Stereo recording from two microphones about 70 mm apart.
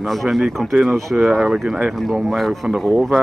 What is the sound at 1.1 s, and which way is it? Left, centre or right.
Speech, centre.